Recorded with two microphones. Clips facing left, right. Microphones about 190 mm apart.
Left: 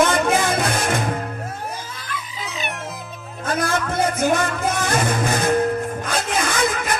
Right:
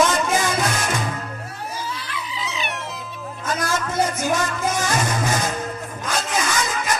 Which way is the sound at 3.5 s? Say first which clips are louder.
Left 2 dB; 55° left (ahead or behind).